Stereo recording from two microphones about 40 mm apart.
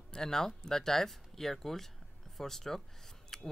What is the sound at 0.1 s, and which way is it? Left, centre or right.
Speech, centre.